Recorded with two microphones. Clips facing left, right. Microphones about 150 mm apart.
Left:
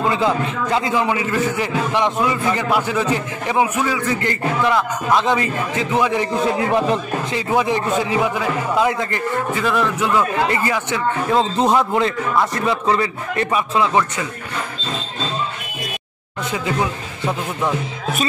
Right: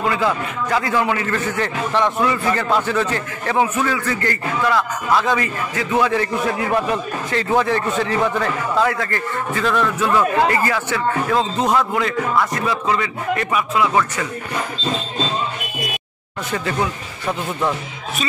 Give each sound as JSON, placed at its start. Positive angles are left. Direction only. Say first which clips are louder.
{"t": 0.1, "sound": "a man's voice", "louder": "left 2 dB", "side_deg": 25}
{"t": 16.5, "sound": "a man's voice", "louder": "even", "side_deg": 15}